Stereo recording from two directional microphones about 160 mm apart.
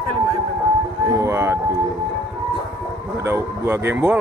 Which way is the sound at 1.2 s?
15° right (ahead or behind).